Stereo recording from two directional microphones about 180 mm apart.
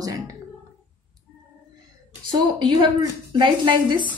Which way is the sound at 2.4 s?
25° right (ahead or behind).